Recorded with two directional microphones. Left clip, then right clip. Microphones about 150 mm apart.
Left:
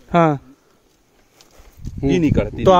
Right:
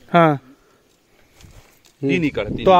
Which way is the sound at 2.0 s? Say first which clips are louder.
Left 2 dB; 50° left (ahead or behind).